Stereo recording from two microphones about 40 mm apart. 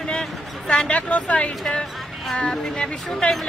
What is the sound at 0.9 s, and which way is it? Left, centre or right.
Speech, left.